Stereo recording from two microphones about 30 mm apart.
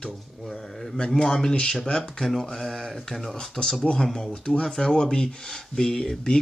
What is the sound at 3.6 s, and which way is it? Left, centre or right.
Speech, left.